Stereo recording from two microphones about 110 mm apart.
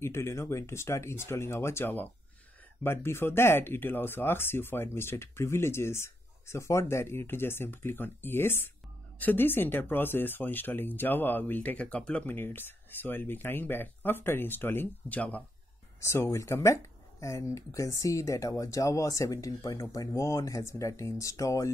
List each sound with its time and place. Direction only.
0.0 s speech: 25° left (ahead or behind)
16.0 s speech: 25° left (ahead or behind)